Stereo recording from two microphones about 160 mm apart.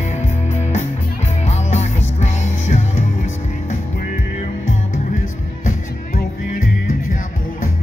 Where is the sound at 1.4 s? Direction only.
45° left (ahead or behind).